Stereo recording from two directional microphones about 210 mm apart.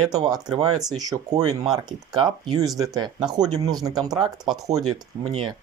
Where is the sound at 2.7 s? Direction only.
15° right (ahead or behind).